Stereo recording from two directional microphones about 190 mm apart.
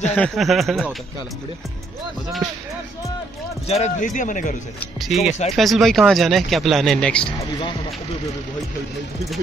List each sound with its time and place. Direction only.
0.1 s speech: 5° left (ahead or behind)
3.6 s speech: 35° left (ahead or behind)
5.0 s speech: centre (ahead or behind)